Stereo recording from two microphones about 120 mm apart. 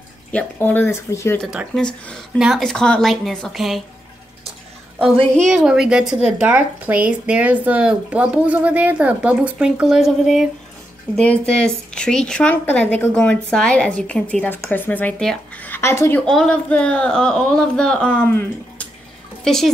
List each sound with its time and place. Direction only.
0.3 s a woman's voice: 10° left (ahead or behind)
1.8 s a woman's voice: 5° left (ahead or behind)
5.3 s a woman's voice: centre (ahead or behind)
11.1 s a woman's voice: 10° left (ahead or behind)
16.3 s a woman's voice: 5° left (ahead or behind)
18.3 s speech: 20° left (ahead or behind)
19.4 s speech: 5° left (ahead or behind)